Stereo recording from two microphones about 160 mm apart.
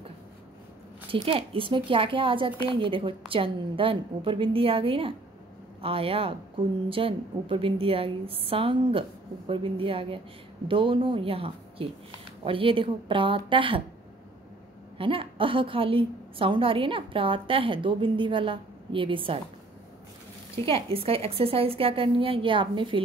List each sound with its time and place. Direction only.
1.1 s a woman's voice: 35° right (ahead or behind)
15.0 s a woman's voice: 35° right (ahead or behind)
20.5 s a woman's voice: 35° right (ahead or behind)